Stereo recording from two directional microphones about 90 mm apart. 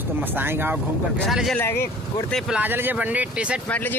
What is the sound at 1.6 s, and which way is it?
Speech, 25° left (ahead or behind).